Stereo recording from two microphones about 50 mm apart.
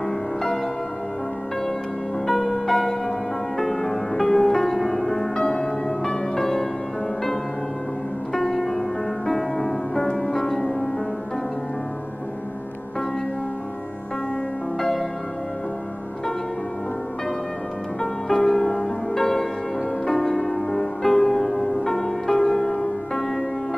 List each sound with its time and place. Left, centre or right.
2.2 s music: centre
8.3 s music: centre
14.8 s music: centre
18.3 s music: centre